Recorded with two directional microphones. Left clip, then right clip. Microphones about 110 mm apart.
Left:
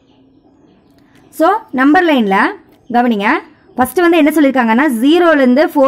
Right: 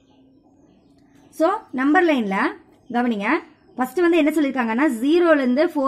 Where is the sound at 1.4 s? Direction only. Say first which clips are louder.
Left 9 dB; 40° left (ahead or behind).